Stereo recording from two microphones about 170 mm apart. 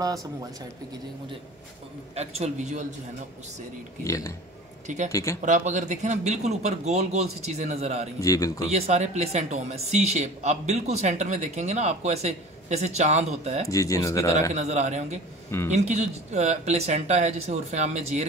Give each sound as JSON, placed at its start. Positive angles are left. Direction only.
{"t": 0.0, "sound": "speech", "side_deg": -20}
{"t": 2.1, "sound": "speech", "side_deg": -40}
{"t": 4.0, "sound": "speech", "side_deg": 20}
{"t": 4.8, "sound": "speech", "side_deg": -45}
{"t": 5.1, "sound": "speech", "side_deg": 20}
{"t": 5.4, "sound": "speech", "side_deg": -45}
{"t": 8.2, "sound": "speech", "side_deg": 20}
{"t": 8.6, "sound": "speech", "side_deg": -40}
{"t": 13.7, "sound": "speech", "side_deg": 20}
{"t": 14.5, "sound": "speech", "side_deg": -45}